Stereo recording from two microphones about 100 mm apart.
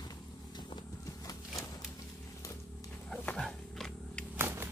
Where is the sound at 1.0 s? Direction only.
35° left (ahead or behind).